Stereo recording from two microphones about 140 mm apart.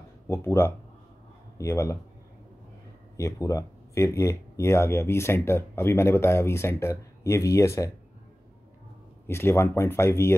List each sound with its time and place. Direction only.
0.3 s speech: 20° left (ahead or behind)
3.2 s speech: 20° left (ahead or behind)
9.3 s speech: 15° left (ahead or behind)